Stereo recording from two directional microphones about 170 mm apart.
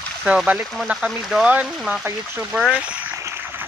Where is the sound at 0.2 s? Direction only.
5° right (ahead or behind).